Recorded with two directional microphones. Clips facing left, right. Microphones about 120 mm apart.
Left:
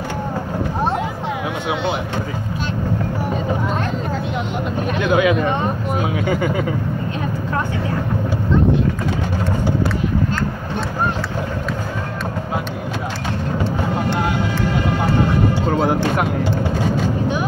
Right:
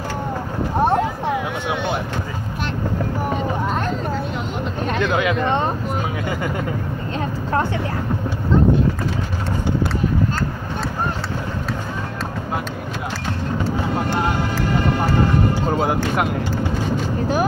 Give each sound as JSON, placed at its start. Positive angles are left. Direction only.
{"t": 5.0, "sound": "speech", "side_deg": 10}